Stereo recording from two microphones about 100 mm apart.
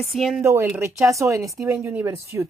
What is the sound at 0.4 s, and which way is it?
Speech, 25° right (ahead or behind).